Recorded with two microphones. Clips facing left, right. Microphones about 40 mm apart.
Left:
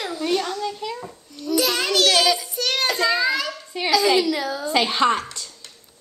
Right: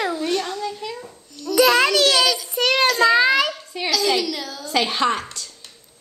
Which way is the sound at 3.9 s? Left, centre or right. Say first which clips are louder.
Left 3 dB; centre.